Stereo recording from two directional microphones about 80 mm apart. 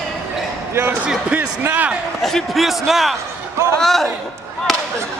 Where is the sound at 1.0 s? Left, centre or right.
Centre.